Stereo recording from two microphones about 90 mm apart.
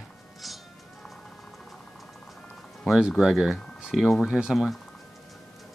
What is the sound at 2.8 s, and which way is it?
Speech, 5° right (ahead or behind).